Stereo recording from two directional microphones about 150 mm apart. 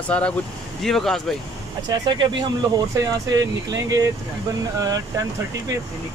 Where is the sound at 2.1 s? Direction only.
30° right (ahead or behind).